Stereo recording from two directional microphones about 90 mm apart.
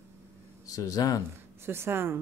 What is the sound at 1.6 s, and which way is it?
Speech, 25° right (ahead or behind).